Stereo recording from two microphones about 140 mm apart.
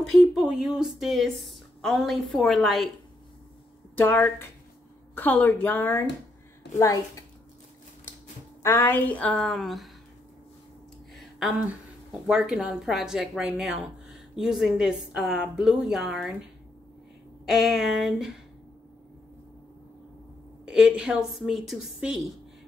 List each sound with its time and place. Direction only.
0.0 s a woman's voice: centre (ahead or behind)
3.9 s a woman's voice: 15° left (ahead or behind)
8.6 s a woman's voice: 20° left (ahead or behind); by 9.8 s centre (ahead or behind)
11.1 s a woman's voice: centre (ahead or behind)
17.5 s a woman's voice: 5° right (ahead or behind)
20.6 s a woman's voice: 5° right (ahead or behind)